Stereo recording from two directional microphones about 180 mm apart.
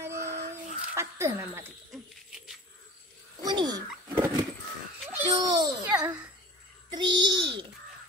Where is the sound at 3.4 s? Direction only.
25° right (ahead or behind).